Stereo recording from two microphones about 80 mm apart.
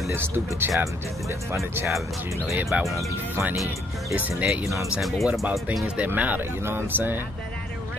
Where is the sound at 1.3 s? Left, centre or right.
Right.